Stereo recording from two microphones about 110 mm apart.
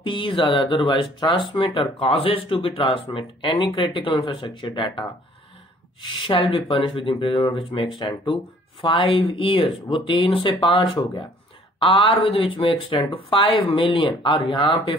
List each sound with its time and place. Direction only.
0.0 s speech: 50° left (ahead or behind)
6.1 s speech: 50° left (ahead or behind)